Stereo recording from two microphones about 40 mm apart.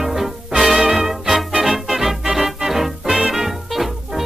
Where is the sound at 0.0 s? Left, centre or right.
Centre.